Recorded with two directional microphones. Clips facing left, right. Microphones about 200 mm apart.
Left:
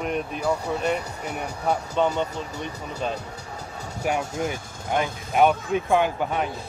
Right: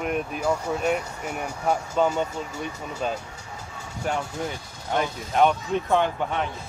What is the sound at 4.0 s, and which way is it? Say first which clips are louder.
Speech: left 2 dB; 10° left (ahead or behind).